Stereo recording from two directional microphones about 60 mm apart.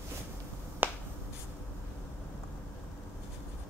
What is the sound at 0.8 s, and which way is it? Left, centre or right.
Finger snapping, right.